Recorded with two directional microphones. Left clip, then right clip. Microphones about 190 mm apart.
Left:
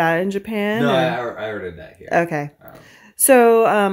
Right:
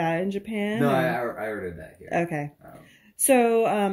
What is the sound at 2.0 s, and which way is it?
Speech, 30° left (ahead or behind).